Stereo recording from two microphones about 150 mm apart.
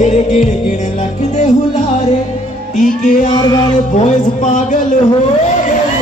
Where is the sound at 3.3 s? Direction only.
30° left (ahead or behind).